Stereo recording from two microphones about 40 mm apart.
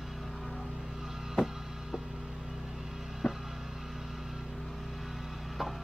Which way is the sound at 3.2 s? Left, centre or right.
Left.